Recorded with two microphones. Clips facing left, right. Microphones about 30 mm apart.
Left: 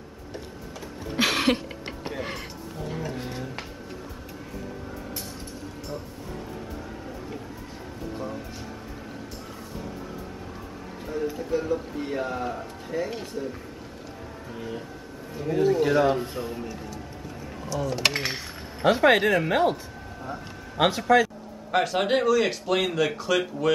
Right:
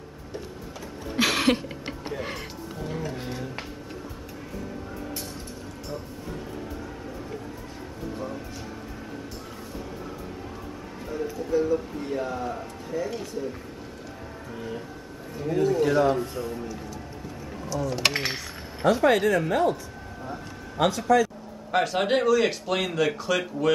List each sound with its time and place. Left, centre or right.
1.2 s a sound: centre
2.9 s music: centre
11.1 s music: centre
11.7 s a sound: left
12.9 s speech: left
15.3 s a man's voice: centre
17.8 s a sound: centre
18.9 s speech: left
21.7 s speech: centre